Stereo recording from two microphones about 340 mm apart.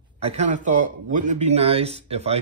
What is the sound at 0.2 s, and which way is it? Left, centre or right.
Speech, centre.